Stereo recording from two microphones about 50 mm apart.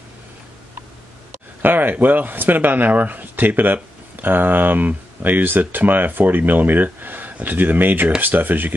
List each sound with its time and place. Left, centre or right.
1.6 s speech: right